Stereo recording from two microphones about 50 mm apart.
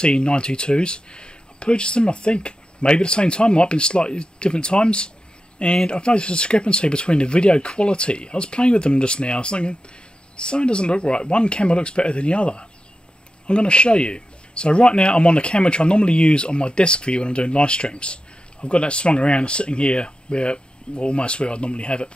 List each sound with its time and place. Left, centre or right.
0.0 s speech: centre